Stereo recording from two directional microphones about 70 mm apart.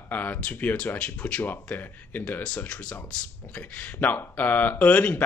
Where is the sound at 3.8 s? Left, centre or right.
Left.